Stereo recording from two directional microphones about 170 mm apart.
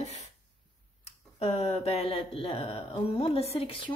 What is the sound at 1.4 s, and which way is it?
Speech, 35° left (ahead or behind).